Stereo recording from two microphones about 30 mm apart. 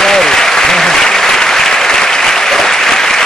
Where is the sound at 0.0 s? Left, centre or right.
Centre.